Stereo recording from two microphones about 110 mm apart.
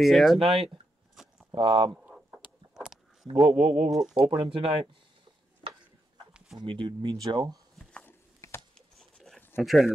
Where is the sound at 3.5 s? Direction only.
70° right (ahead or behind).